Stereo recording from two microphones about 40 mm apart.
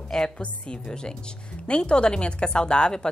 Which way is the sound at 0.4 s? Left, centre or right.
Left.